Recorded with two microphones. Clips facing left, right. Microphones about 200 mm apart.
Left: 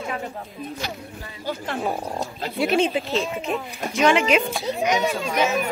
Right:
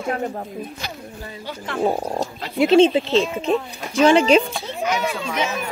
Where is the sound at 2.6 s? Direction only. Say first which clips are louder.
Right 7 dB; 30° right (ahead or behind).